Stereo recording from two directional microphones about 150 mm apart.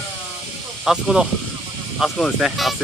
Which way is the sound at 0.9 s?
5° right (ahead or behind).